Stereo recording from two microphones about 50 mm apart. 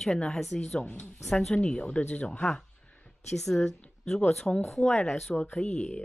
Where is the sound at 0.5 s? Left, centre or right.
Left.